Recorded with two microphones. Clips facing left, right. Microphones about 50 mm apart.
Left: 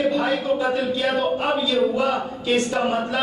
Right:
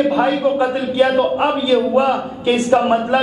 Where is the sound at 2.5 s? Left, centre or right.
Centre.